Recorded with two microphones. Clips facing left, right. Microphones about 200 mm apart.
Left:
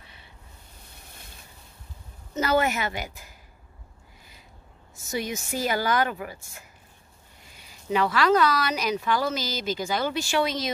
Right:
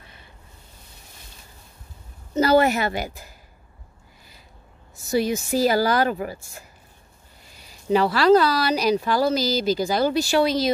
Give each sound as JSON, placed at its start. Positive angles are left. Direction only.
{"t": 0.0, "sound": "a sound", "side_deg": -45}
{"t": 2.3, "sound": "speech", "side_deg": -35}
{"t": 5.0, "sound": "speech", "side_deg": -35}